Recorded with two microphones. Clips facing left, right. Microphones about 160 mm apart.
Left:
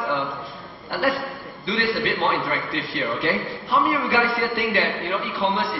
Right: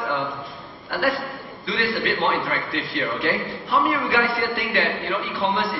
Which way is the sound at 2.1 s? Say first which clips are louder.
Even; centre (ahead or behind).